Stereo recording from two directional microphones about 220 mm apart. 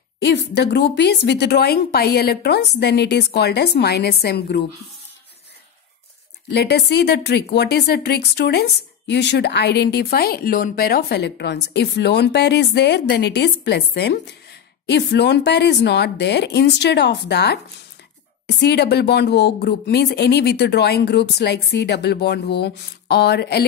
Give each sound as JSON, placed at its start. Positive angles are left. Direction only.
{"t": 0.2, "sound": "speech", "side_deg": 50}
{"t": 6.5, "sound": "speech", "side_deg": 50}
{"t": 18.6, "sound": "speech", "side_deg": 50}